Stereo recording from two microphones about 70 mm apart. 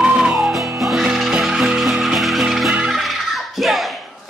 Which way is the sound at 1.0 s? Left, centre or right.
Centre.